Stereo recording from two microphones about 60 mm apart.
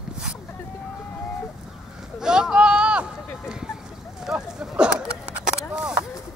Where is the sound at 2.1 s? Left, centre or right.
Centre.